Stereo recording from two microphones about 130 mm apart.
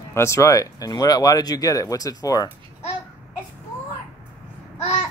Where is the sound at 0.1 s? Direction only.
20° left (ahead or behind).